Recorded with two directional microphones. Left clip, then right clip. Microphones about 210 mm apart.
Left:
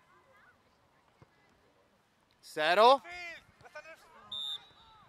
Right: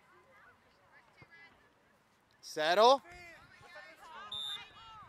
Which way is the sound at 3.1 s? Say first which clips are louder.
Left 9 dB; 25° left (ahead or behind).